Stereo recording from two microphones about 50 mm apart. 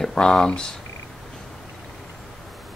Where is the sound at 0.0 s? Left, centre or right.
Centre.